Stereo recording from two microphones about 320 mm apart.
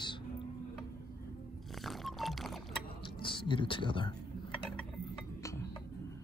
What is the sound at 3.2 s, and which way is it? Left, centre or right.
Speech, centre.